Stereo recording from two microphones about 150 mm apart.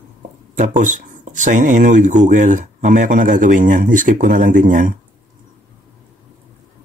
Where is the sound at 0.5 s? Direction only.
55° right (ahead or behind).